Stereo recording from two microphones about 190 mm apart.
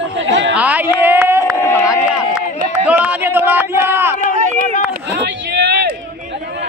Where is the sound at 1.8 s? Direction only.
5° right (ahead or behind).